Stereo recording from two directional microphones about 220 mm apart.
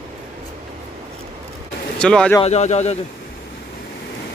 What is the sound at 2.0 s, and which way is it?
Speech, 5° left (ahead or behind).